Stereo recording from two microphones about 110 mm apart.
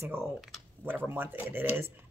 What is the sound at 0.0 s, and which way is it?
Speech, 20° right (ahead or behind).